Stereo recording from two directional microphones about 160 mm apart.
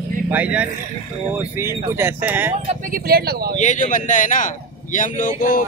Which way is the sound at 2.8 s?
60° right (ahead or behind).